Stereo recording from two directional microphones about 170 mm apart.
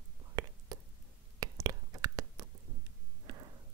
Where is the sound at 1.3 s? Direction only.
20° right (ahead or behind).